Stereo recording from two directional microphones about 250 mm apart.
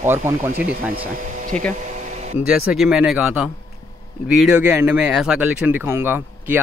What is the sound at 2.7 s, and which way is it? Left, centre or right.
Speech, centre.